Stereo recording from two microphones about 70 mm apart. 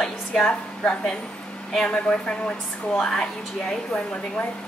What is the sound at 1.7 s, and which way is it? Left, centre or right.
A woman's voice, centre.